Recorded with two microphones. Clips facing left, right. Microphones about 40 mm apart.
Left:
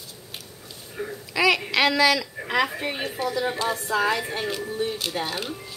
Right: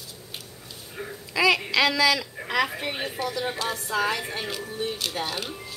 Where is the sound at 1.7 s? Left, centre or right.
Left.